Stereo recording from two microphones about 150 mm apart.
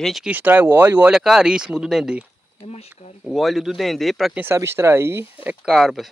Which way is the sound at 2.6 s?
40° left (ahead or behind).